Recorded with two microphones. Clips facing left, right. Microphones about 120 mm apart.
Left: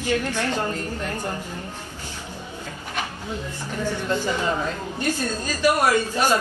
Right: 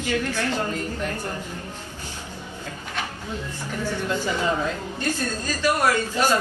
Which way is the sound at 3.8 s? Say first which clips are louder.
Left 2 dB; 15° left (ahead or behind).